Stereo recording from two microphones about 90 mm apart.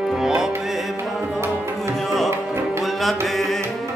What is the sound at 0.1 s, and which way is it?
Music, 5° right (ahead or behind).